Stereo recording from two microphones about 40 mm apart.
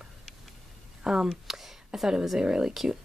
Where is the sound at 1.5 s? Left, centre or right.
Centre.